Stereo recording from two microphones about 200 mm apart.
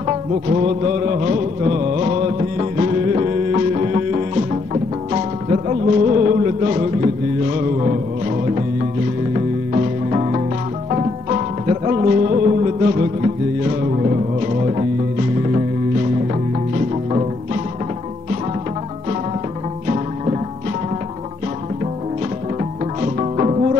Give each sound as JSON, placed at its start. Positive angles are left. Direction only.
{"t": 0.0, "sound": "music", "side_deg": -35}
{"t": 9.3, "sound": "music", "side_deg": -30}
{"t": 23.0, "sound": "music", "side_deg": -35}